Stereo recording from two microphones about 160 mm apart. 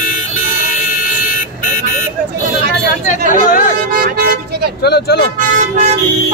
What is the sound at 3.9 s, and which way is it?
Vehicle, 70° right (ahead or behind).